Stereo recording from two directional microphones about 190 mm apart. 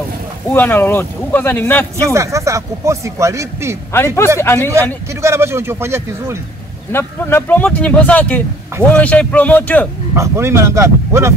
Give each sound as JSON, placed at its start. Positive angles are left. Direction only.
{"t": 0.5, "sound": "speech", "side_deg": 10}
{"t": 2.0, "sound": "speech", "side_deg": -15}
{"t": 3.9, "sound": "speech", "side_deg": 10}
{"t": 5.2, "sound": "speech", "side_deg": -15}
{"t": 6.9, "sound": "speech", "side_deg": 15}
{"t": 10.1, "sound": "speech", "side_deg": -15}